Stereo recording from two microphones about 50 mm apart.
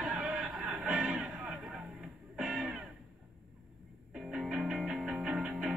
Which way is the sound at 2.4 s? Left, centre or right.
Right.